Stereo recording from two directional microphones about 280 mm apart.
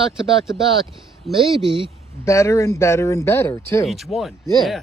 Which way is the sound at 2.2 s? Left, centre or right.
Centre.